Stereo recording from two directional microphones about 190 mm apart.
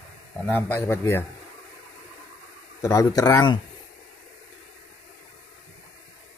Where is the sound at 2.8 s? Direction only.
15° left (ahead or behind).